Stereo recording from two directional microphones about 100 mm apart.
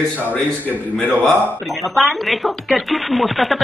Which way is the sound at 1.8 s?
Centre (ahead or behind).